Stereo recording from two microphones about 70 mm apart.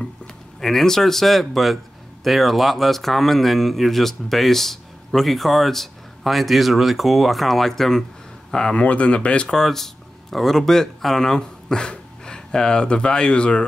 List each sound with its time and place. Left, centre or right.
0.6 s speech: centre